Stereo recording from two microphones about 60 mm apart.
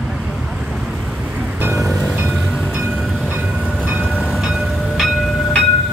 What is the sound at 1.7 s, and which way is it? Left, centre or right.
Music, centre.